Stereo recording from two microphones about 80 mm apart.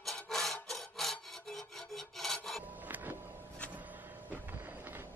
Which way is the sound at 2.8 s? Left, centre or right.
Right.